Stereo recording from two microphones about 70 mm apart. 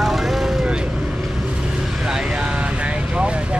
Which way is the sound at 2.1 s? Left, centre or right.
Centre.